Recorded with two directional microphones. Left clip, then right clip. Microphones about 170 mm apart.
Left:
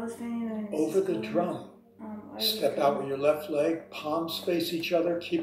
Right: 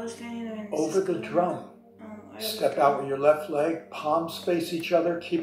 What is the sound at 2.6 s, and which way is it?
Speech, centre (ahead or behind).